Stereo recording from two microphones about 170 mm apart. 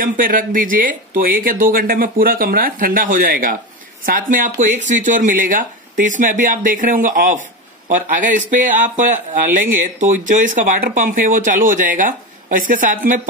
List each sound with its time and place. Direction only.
0.0 s speech: 55° right (ahead or behind)